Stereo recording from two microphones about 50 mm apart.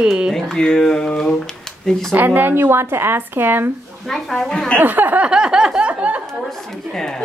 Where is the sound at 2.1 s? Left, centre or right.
Right.